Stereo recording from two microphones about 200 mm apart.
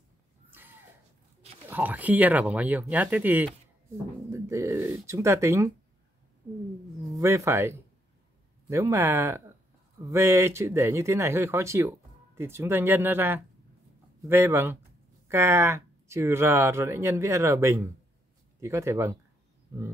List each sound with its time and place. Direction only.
0.5 s a sound: 10° right (ahead or behind)
1.7 s speech: 10° right (ahead or behind)
7.1 s speech: 15° right (ahead or behind)